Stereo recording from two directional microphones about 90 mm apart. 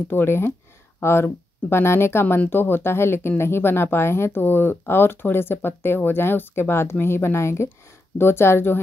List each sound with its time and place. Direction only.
0.1 s speech: 25° left (ahead or behind)